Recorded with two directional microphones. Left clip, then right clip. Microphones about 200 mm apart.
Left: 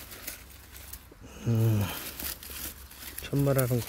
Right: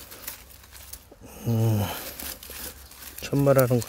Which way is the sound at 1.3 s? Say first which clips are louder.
Right 3 dB; 25° right (ahead or behind).